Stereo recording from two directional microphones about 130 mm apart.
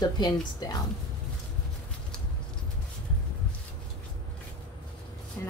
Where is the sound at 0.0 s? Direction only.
30° left (ahead or behind).